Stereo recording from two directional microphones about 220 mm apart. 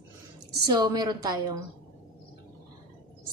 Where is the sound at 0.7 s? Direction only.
15° right (ahead or behind).